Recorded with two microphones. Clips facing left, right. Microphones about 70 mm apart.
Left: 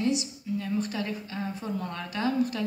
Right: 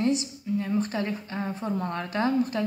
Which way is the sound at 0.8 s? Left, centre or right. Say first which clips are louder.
Right 3 dB; right.